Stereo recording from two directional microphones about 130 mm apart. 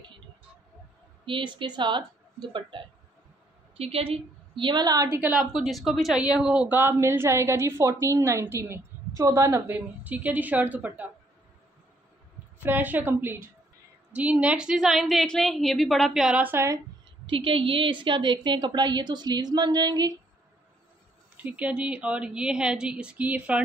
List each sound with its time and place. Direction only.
1.2 s a woman's voice: 40° right (ahead or behind)
3.7 s a woman's voice: 50° right (ahead or behind); by 5.3 s 20° right (ahead or behind)
5.3 s a woman's voice: 5° right (ahead or behind); by 9.8 s 25° right (ahead or behind)
9.8 s a woman's voice: 10° right (ahead or behind)
12.6 s a woman's voice: 15° right (ahead or behind)
17.3 s a woman's voice: 40° right (ahead or behind)
21.4 s a woman's voice: 10° right (ahead or behind)